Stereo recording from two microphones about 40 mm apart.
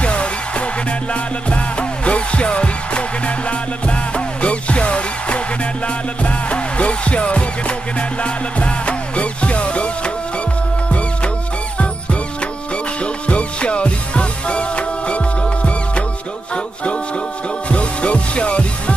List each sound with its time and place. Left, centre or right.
0.0 s music: left
13.0 s music: left
17.6 s music: left